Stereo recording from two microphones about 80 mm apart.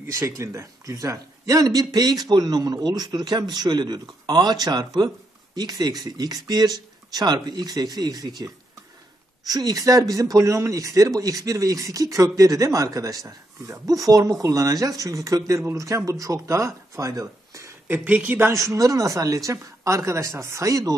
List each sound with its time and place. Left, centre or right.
0.1 s speech: right
9.5 s speech: right
17.8 s speech: centre
18.5 s speech: right